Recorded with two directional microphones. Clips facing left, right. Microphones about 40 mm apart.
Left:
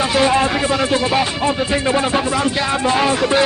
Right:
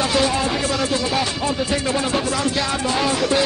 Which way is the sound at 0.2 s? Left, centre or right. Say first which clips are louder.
Left 5 dB; left.